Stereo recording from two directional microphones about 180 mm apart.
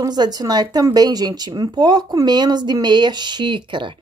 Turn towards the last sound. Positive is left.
turn(degrees=-25)  # may be behind; listen again after turning